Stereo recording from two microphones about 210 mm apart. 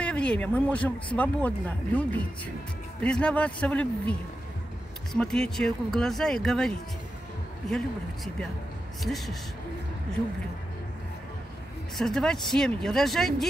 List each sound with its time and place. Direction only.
0.0 s speech: 5° left (ahead or behind)
9.0 s speech: centre (ahead or behind)
12.0 s speech: 5° left (ahead or behind)